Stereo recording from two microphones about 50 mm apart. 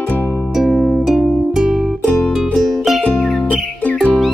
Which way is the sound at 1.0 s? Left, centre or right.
Centre.